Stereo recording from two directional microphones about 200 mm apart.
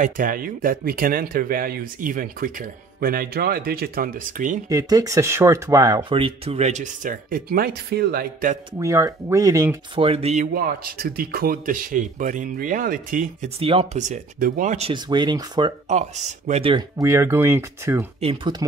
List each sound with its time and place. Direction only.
0.0 s speech: 45° right (ahead or behind)
4.6 s speech: 20° right (ahead or behind); by 8.5 s 45° right (ahead or behind)
8.7 s speech: 15° right (ahead or behind)
9.9 s speech: 30° right (ahead or behind)
13.6 s speech: 25° right (ahead or behind)
15.9 s speech: 35° right (ahead or behind)
16.7 s speech: 15° right (ahead or behind)
18.2 s speech: 25° right (ahead or behind)